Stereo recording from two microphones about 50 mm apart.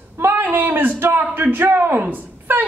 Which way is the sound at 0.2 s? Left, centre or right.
Right.